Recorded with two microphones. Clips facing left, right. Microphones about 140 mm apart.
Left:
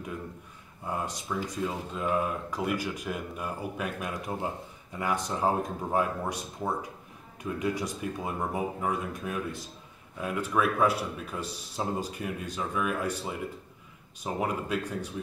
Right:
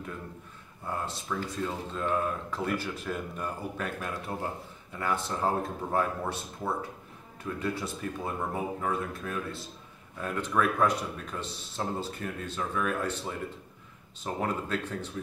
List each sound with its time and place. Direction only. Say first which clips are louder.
0.8 s speech: left 1 dB; 15° left (ahead or behind)